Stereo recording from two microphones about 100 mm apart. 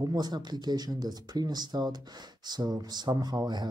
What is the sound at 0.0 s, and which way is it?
Speech, 40° right (ahead or behind).